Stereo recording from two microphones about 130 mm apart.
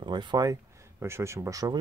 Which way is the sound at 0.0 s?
35° right (ahead or behind).